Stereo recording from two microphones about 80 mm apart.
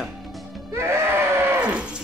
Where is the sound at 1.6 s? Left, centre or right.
Centre.